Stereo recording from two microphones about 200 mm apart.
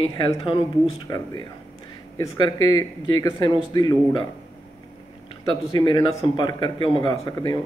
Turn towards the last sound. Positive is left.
turn(degrees=20)  # may be behind; listen again after turning